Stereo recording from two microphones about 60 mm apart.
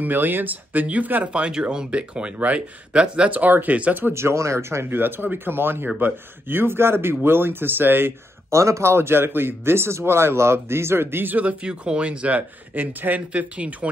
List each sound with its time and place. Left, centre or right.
0.0 s speech: right
4.1 s a man's voice: right
8.5 s a man's voice: right